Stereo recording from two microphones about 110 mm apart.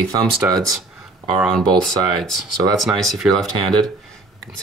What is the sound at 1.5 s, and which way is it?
Speech, 5° left (ahead or behind).